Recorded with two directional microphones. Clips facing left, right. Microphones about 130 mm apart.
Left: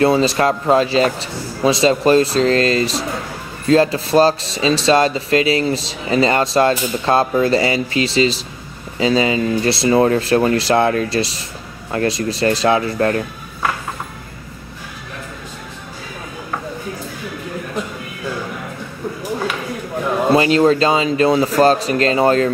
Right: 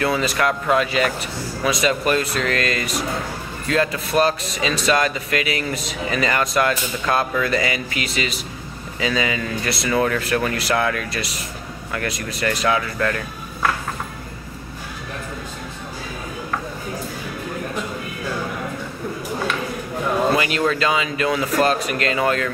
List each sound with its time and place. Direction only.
0.0 s speech: 30° left (ahead or behind)
20.2 s speech: 30° left (ahead or behind)